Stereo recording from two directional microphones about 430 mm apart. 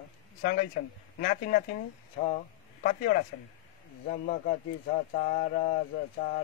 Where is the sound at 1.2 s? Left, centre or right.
Centre.